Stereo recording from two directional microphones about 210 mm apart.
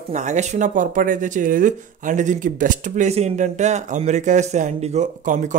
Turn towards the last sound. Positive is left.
turn(degrees=-35)  # may be behind; listen again after turning